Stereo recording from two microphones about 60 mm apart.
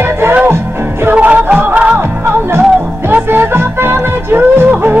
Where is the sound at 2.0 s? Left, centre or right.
Right.